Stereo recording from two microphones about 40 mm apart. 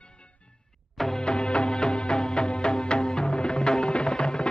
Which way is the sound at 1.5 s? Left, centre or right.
Left.